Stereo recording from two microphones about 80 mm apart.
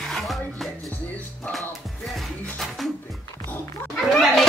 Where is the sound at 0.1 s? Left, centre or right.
Centre.